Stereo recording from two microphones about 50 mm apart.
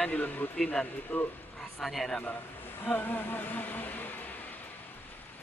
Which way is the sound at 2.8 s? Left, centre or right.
Left.